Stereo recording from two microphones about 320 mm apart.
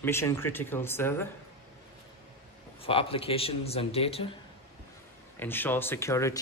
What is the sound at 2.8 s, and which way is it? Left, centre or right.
Speech, centre.